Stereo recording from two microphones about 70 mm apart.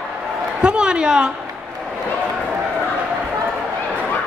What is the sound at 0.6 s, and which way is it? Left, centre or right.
Speech, centre.